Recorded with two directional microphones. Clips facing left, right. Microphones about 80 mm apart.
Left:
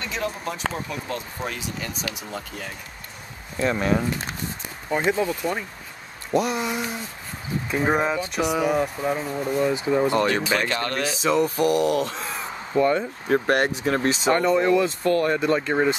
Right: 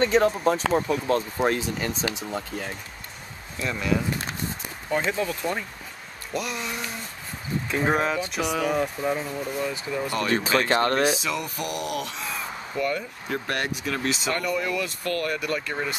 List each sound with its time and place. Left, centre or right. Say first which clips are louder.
0.0 s speech: right 9 dB; right
3.5 s speech: left 4 dB; left
5.0 s speech: left 4 dB; centre
5.4 s speech: left 2 dB; centre
6.3 s speech: left 7 dB; left; by 9.3 s centre
9.3 s speech: left 6 dB; left
10.7 s speech: right 5 dB; right
11.1 s speech: left 9 dB; left